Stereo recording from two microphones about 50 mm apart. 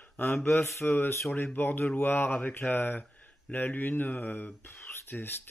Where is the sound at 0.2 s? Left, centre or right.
Left.